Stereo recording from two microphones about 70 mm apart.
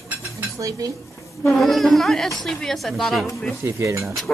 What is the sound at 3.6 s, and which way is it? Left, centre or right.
Speech, right.